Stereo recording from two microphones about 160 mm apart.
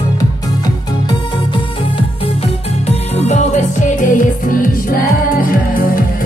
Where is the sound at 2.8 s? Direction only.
40° left (ahead or behind).